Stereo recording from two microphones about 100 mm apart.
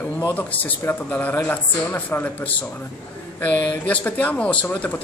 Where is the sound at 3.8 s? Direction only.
15° left (ahead or behind).